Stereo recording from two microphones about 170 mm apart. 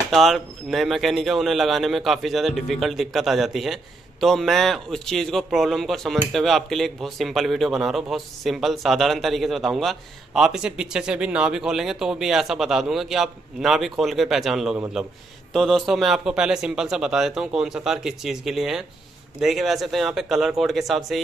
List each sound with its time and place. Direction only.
0.1 s a man's voice: centre (ahead or behind)